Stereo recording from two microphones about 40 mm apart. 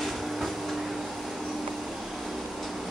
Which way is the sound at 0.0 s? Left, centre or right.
Centre.